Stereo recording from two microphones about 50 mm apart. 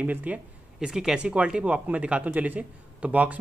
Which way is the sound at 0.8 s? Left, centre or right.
Centre.